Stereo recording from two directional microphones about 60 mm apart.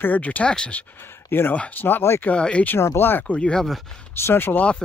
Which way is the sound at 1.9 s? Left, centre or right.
Left.